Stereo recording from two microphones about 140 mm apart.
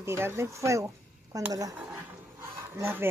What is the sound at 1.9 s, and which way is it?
Dog, 20° right (ahead or behind).